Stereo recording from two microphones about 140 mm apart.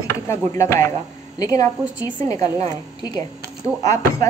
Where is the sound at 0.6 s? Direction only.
20° left (ahead or behind).